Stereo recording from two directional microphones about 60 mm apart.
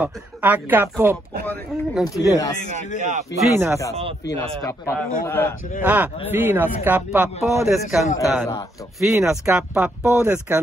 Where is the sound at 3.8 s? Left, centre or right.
Left.